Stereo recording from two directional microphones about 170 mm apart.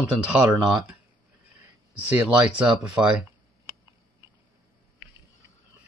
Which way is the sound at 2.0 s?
5° right (ahead or behind).